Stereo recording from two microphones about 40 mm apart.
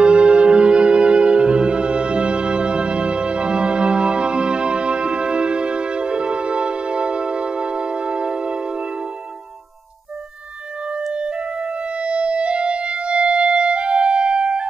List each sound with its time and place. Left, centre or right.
0.0 s music: right
11.1 s music: right